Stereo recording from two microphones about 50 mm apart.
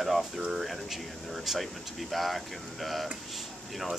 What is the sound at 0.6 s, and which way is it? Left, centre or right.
Speech, centre.